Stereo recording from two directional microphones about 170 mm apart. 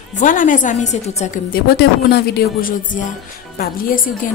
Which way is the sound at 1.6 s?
70° left (ahead or behind).